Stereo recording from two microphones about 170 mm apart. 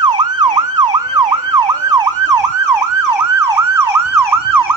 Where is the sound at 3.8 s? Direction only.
15° right (ahead or behind).